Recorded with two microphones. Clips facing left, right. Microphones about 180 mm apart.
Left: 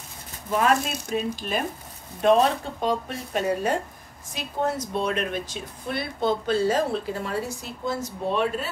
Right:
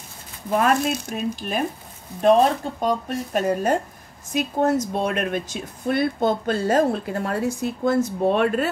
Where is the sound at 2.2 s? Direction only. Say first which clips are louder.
Right 3 dB; 40° right (ahead or behind).